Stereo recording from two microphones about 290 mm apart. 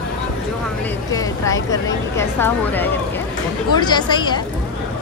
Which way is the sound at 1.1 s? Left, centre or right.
Centre.